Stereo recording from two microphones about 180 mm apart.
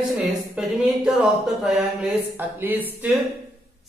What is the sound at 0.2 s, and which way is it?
Speech, 5° right (ahead or behind).